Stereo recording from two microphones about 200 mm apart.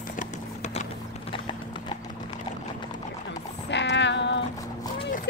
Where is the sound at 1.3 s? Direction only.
25° left (ahead or behind).